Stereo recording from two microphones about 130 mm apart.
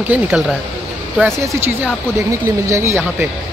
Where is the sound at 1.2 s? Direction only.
20° right (ahead or behind).